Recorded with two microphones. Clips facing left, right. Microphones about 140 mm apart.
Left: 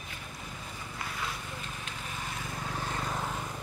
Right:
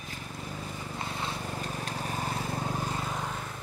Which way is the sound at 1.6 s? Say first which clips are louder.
Right 7 dB; 40° right (ahead or behind).